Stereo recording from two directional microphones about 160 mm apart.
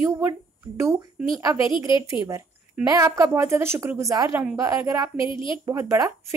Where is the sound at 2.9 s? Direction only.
20° right (ahead or behind).